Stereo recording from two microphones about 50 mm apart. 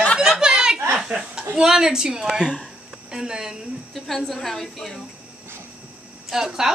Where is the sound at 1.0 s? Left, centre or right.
Centre.